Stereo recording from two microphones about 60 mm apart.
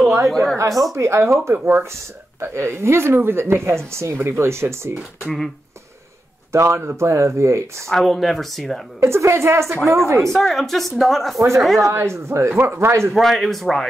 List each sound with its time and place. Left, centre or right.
0.6 s speech: right
0.9 s speech: right
1.5 s speech: right
6.5 s speech: right
7.9 s a woman's voice: centre
9.0 s speech: right
10.3 s a woman's voice: centre
11.3 s speech: right
11.6 s a woman's voice: centre
11.9 s speech: right
13.1 s a woman's voice: centre